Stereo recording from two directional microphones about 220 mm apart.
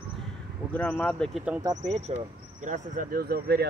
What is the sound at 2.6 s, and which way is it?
Speech, 35° right (ahead or behind).